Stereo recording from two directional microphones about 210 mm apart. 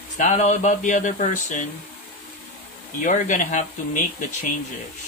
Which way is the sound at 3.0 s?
35° left (ahead or behind).